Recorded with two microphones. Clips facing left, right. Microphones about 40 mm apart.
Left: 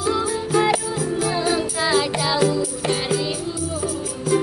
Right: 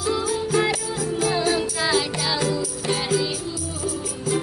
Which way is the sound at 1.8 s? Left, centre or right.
Centre.